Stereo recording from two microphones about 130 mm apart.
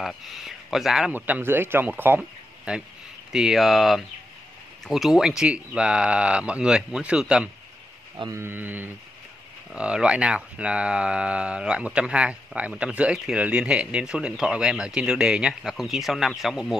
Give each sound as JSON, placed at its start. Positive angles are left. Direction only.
{"t": 0.0, "sound": "a sound", "side_deg": 0}
{"t": 1.1, "sound": "speech", "side_deg": -15}
{"t": 8.3, "sound": "speech", "side_deg": -20}